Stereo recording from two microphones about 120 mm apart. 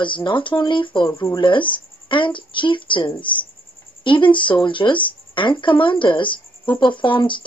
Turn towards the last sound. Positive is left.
turn(degrees=45)  # may be behind; listen again after turning